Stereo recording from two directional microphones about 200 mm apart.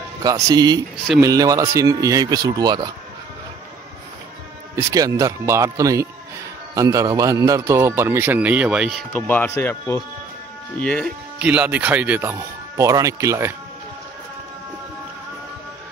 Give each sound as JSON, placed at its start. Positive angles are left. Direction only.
{"t": 0.2, "sound": "a man's voice", "side_deg": -15}
{"t": 4.7, "sound": "a man's voice", "side_deg": -15}
{"t": 9.1, "sound": "speech", "side_deg": 10}
{"t": 11.3, "sound": "a man's voice", "side_deg": -10}